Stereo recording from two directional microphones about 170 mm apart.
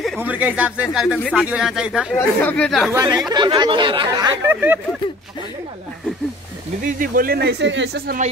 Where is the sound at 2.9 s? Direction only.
20° right (ahead or behind).